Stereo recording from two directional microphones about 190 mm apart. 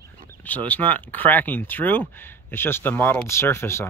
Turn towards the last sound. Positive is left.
turn(degrees=15)  # may be behind; listen again after turning